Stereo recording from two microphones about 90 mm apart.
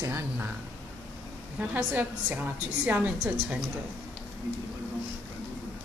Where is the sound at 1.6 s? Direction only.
15° right (ahead or behind).